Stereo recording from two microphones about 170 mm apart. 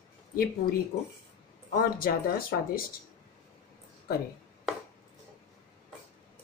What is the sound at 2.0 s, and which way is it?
Speech, 60° left (ahead or behind).